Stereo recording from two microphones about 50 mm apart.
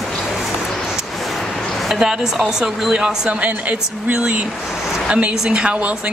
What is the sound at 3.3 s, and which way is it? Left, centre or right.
Speech, right.